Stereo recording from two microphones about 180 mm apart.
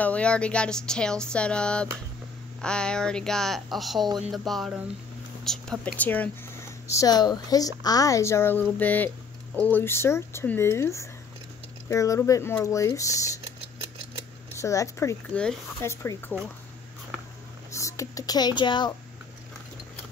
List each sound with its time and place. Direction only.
0.0 s a sound: 5° left (ahead or behind)
5.4 s whispering: centre (ahead or behind)
5.9 s speech: 10° left (ahead or behind)
14.5 s speech: 15° left (ahead or behind)
17.7 s speech: 15° left (ahead or behind)